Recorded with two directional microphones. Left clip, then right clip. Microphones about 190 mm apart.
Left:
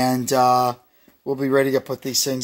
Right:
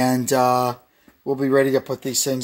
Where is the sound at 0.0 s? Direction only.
Centre (ahead or behind).